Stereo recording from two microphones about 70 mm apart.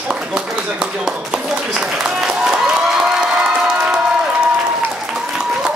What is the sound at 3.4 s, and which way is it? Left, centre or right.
Crowd, centre.